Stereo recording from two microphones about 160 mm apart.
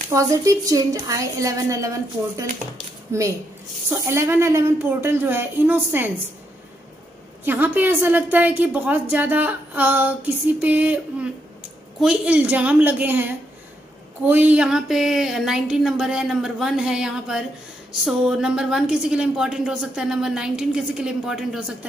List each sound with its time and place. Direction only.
0.1 s a woman's voice: 20° right (ahead or behind)
3.1 s a woman's voice: 20° right (ahead or behind)
7.4 s a woman's voice: 10° right (ahead or behind)